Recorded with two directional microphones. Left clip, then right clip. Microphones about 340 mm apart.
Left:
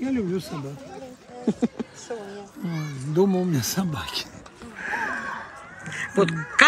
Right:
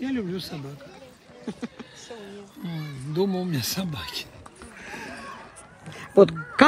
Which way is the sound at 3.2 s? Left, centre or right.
Centre.